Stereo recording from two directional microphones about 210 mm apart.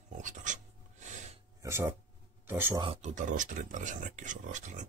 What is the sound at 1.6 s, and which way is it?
Speech, 10° right (ahead or behind).